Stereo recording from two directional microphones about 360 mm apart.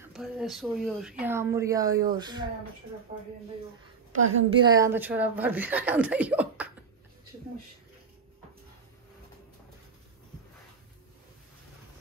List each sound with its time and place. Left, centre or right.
0.0 s speech: centre
3.1 s speech: right
4.1 s a woman's voice: right
4.6 s speech: centre